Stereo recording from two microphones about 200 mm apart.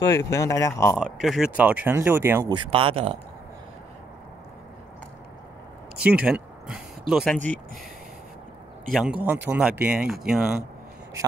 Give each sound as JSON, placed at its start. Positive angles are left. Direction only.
{"t": 0.0, "sound": "speech", "side_deg": 15}
{"t": 0.9, "sound": "speech", "side_deg": 0}
{"t": 2.5, "sound": "speech", "side_deg": -25}
{"t": 5.9, "sound": "speech", "side_deg": -5}
{"t": 8.9, "sound": "speech", "side_deg": -5}